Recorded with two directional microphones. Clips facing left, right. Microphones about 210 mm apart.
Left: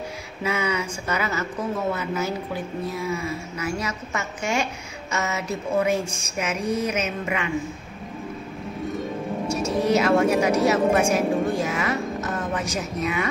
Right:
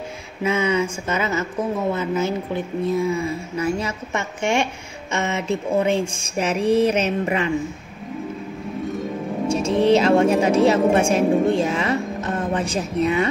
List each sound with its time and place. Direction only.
0.4 s speech: 25° right (ahead or behind)
5.1 s a sound: 25° right (ahead or behind)
9.5 s a woman's voice: 30° right (ahead or behind)